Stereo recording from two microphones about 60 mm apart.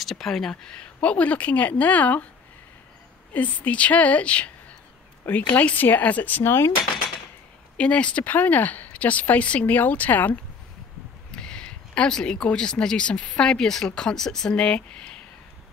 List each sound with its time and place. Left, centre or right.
0.0 s speech: centre
1.0 s speech: left
3.3 s speech: left
6.4 s speech: left
7.7 s speech: centre
11.3 s speech: centre